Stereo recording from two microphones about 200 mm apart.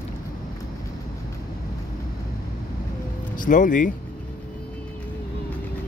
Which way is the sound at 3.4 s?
40° left (ahead or behind).